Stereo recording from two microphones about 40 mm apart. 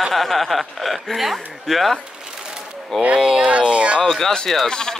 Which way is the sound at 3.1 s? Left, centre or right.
Centre.